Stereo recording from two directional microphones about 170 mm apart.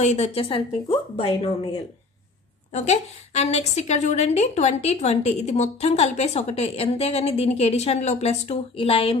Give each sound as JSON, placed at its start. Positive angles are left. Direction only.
{"t": 0.0, "sound": "a woman's voice", "side_deg": 40}
{"t": 2.7, "sound": "a woman's voice", "side_deg": 40}